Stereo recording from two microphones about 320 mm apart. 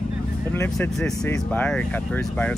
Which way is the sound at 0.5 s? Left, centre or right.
Centre.